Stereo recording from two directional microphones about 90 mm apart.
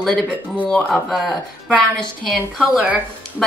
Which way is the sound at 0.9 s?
5° left (ahead or behind).